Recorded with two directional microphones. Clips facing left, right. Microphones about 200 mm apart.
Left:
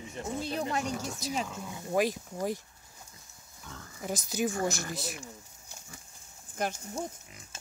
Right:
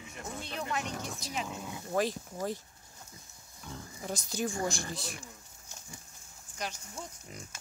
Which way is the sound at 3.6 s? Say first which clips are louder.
Right 3 dB; 20° right (ahead or behind).